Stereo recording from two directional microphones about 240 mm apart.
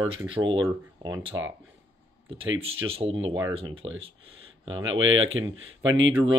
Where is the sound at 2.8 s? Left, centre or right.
Right.